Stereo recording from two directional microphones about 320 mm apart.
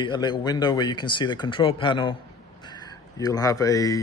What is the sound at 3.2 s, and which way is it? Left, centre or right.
Speech, centre.